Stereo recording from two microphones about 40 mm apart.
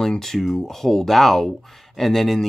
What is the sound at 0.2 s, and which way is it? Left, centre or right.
Speech, centre.